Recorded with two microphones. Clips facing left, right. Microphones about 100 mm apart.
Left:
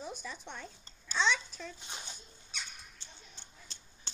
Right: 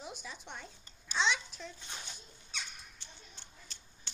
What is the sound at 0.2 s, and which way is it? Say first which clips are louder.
A child's voice: left 2 dB; 5° right (ahead or behind).